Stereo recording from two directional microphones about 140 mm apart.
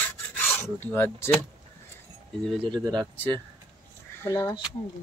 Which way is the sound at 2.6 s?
30° right (ahead or behind).